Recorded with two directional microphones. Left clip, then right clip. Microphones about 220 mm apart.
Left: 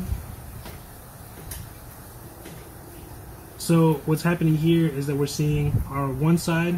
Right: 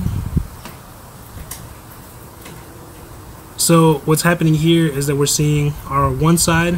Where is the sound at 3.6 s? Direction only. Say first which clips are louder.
Right 9 dB; 40° right (ahead or behind).